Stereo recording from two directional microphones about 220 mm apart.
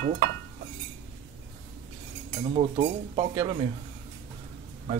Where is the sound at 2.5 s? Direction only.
30° right (ahead or behind).